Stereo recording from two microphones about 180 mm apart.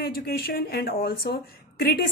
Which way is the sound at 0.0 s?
60° left (ahead or behind).